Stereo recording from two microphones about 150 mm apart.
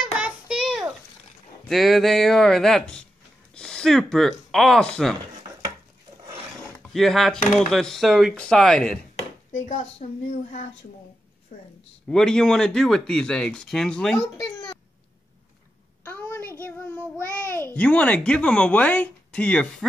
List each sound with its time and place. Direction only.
0.0 s a sound: 5° right (ahead or behind)
1.7 s speech: centre (ahead or behind)
6.8 s speech: centre (ahead or behind)
9.7 s a woman's voice: 45° left (ahead or behind)
11.5 s speech: 70° left (ahead or behind)
12.1 s speech: 5° left (ahead or behind)
14.3 s speech: 20° left (ahead or behind)
16.0 s child singing: 15° left (ahead or behind)
17.5 s speech: 15° left (ahead or behind)